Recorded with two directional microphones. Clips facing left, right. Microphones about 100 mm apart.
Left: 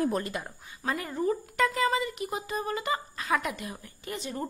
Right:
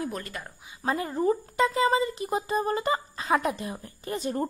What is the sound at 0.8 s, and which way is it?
A woman's voice, 30° right (ahead or behind).